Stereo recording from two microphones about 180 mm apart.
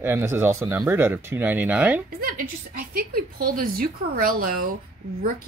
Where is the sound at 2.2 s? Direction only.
55° right (ahead or behind).